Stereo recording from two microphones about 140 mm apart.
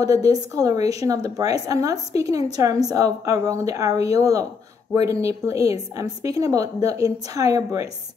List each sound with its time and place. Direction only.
0.0 s a woman's voice: 25° right (ahead or behind)